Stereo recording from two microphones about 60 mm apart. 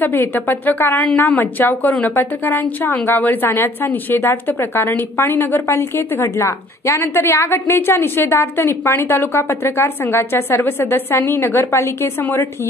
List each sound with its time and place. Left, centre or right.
0.0 s a woman's voice: left
12.2 s a woman's voice: left